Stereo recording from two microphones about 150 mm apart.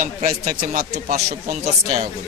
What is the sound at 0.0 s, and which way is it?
Speech, 70° right (ahead or behind).